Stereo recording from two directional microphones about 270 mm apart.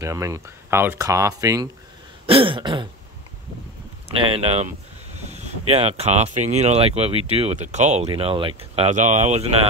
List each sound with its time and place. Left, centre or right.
0.0 s speech: centre
4.3 s speech: right